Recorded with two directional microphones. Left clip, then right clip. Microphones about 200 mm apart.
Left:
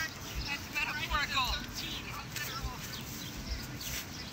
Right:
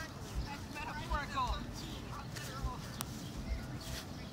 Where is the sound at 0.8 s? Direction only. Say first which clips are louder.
Left 7 dB; 35° right (ahead or behind).